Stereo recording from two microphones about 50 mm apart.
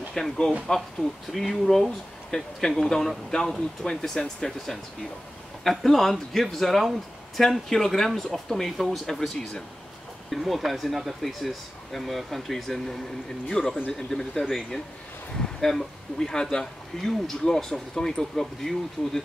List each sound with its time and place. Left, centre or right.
0.1 s speech: centre
1.3 s speech: centre
10.3 s speech: centre